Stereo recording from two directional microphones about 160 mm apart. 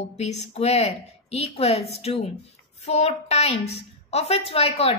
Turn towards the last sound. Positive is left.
turn(degrees=40)  # may be behind; listen again after turning